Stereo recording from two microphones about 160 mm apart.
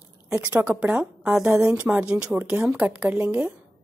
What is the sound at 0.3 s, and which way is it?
A woman's voice, 10° right (ahead or behind).